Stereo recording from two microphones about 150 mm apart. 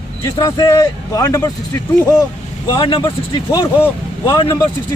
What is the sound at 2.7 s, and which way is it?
A man's voice, 35° left (ahead or behind).